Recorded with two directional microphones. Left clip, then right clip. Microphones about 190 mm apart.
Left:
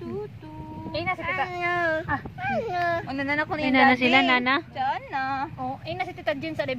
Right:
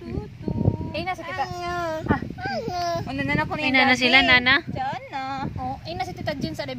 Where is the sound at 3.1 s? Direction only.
60° right (ahead or behind).